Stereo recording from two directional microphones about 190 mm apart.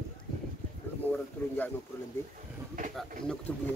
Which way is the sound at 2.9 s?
5° left (ahead or behind).